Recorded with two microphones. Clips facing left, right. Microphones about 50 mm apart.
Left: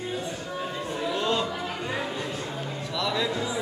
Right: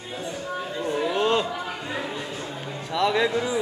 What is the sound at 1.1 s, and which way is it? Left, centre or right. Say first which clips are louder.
Chatter: right 4 dB; right.